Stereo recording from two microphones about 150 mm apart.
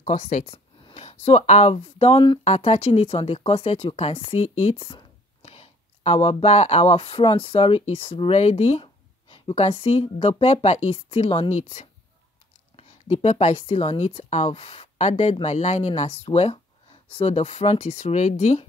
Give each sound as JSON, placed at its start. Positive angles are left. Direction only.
{"t": 0.0, "sound": "speech", "side_deg": 50}
{"t": 2.4, "sound": "speech", "side_deg": 40}